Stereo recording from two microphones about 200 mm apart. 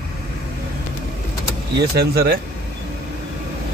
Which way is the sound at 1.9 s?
50° right (ahead or behind).